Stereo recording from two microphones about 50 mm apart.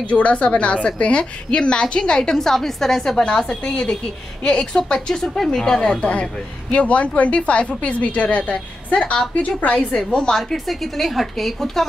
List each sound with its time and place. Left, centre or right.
0.0 s a woman's voice: left; by 3.3 s centre
3.6 s a woman's voice: left; by 11.8 s centre